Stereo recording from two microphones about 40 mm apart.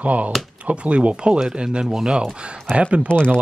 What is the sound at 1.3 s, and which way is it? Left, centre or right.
Speech, centre.